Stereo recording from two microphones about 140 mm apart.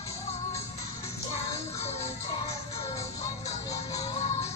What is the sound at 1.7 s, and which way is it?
Music, 50° left (ahead or behind).